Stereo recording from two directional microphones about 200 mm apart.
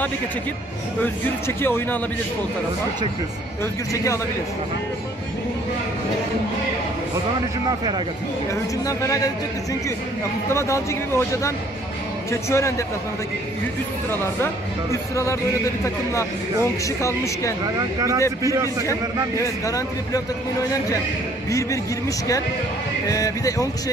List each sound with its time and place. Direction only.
1.6 s speech: 10° left (ahead or behind)
3.9 s speech: 15° left (ahead or behind)
8.8 s speech: 15° left (ahead or behind)
10.5 s speech: 15° left (ahead or behind)
14.1 s speech: 10° left (ahead or behind)
16.8 s speech: 15° left (ahead or behind)
17.7 s speech: 15° right (ahead or behind)
18.9 s speech: 15° left (ahead or behind)
21.5 s speech: 15° left (ahead or behind)
23.0 s speech: 15° left (ahead or behind)